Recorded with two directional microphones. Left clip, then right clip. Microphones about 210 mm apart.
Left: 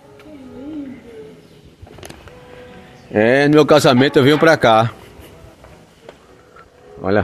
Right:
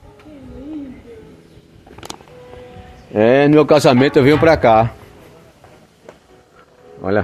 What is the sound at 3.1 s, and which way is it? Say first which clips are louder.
Speech: right 1 dB; 20° left (ahead or behind).